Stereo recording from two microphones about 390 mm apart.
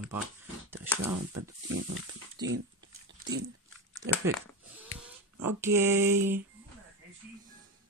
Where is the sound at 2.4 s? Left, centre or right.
Right.